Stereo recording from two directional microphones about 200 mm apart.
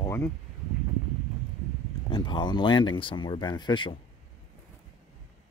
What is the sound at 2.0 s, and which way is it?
Speech, 20° left (ahead or behind).